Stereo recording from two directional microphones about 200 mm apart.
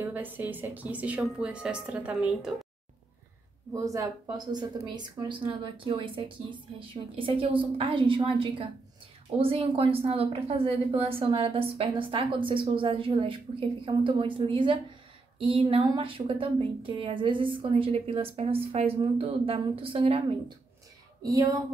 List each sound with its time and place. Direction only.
0.0 s speech: 10° right (ahead or behind)
3.7 s a woman's voice: 15° right (ahead or behind)
21.2 s speech: 15° right (ahead or behind)